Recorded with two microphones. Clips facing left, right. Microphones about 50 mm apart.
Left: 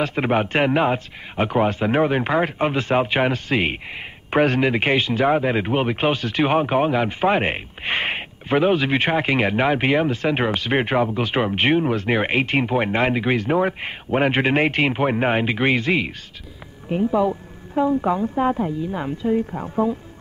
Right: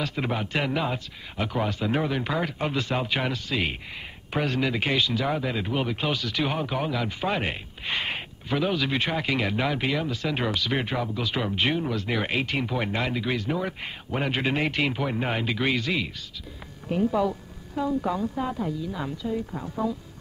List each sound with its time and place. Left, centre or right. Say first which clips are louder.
0.0 s a man's voice: left 8 dB; left
16.9 s a man's voice: left 4 dB; left